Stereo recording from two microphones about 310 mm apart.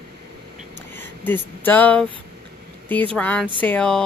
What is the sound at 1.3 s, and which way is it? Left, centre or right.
Speech, centre.